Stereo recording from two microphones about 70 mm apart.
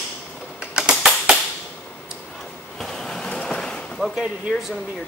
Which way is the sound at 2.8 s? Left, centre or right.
Centre.